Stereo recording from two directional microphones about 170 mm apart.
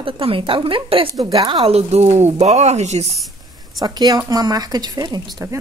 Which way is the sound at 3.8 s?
25° right (ahead or behind).